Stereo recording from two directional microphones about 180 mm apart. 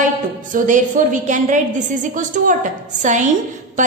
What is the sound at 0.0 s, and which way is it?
A woman's voice, 45° right (ahead or behind).